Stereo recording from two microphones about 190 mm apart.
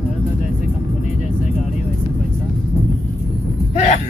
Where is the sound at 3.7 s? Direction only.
35° left (ahead or behind).